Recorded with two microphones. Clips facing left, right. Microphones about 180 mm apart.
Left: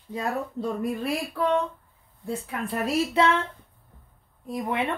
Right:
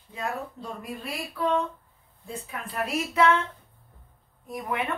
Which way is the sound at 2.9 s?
30° left (ahead or behind).